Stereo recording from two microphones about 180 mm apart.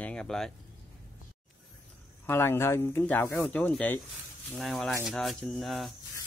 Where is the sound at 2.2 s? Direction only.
15° left (ahead or behind).